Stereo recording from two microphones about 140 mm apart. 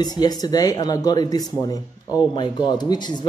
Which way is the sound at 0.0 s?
30° left (ahead or behind).